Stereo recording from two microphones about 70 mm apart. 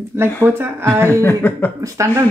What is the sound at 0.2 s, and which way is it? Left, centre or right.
Speech, right.